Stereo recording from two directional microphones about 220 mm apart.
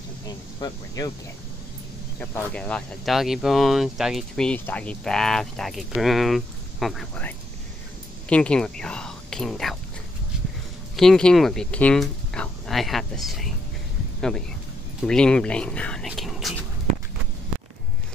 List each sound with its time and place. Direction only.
0.3 s speech: 20° left (ahead or behind)
2.1 s speech: 5° left (ahead or behind)
11.0 s speech: 5° left (ahead or behind)
15.0 s speech: 5° left (ahead or behind)